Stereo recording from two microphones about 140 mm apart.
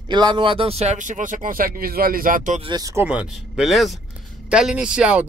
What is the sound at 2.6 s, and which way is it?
Speech, 30° right (ahead or behind).